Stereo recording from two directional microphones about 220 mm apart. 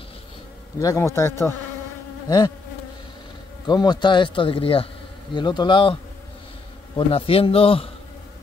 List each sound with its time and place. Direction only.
0.7 s a man's voice: 15° left (ahead or behind)
2.2 s insect: 20° left (ahead or behind)
3.6 s speech: 20° left (ahead or behind)
7.0 s speech: 25° left (ahead or behind)